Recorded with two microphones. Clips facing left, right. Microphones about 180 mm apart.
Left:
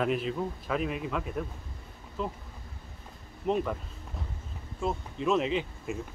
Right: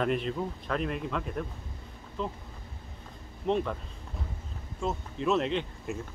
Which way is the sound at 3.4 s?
5° left (ahead or behind).